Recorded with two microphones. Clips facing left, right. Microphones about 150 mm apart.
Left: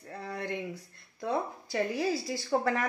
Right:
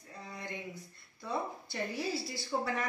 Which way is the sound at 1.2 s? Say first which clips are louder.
Left 5 dB; 85° left.